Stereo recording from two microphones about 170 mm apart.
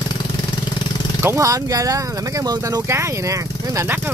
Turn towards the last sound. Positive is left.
turn(degrees=-20)  # may be behind; listen again after turning